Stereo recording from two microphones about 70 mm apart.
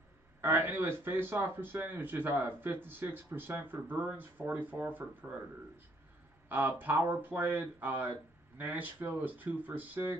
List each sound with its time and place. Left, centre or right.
0.4 s speech: right
6.5 s speech: right